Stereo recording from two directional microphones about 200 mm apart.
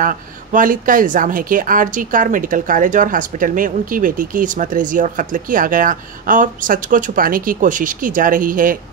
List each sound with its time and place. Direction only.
0.0 s speech: 40° right (ahead or behind)